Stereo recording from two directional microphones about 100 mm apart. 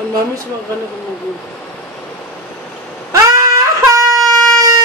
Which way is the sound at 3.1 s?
35° right (ahead or behind).